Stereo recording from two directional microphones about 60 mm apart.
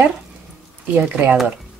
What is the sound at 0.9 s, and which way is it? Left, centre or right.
Speech, right.